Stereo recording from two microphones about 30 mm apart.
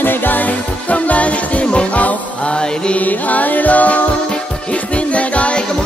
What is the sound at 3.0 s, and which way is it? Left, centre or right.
Music, left.